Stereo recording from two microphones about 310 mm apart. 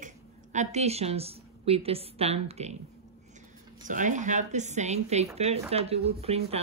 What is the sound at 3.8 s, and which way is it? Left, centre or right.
A woman's voice, right.